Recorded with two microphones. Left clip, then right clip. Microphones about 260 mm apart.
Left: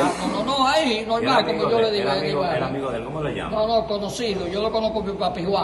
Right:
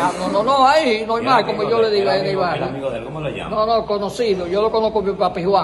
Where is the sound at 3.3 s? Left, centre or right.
Centre.